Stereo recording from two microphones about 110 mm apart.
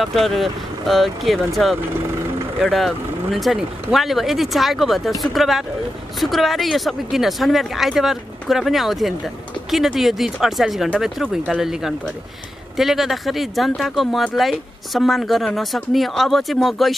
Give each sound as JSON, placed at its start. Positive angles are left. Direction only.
{"t": 0.0, "sound": "speech", "side_deg": 0}